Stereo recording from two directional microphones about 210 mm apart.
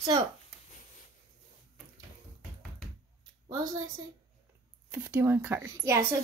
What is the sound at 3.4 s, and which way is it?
Speech, 15° right (ahead or behind).